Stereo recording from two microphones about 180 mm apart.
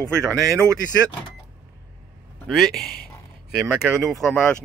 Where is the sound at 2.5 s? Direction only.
Centre (ahead or behind).